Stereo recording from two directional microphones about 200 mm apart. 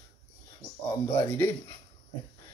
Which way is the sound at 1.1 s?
10° left (ahead or behind).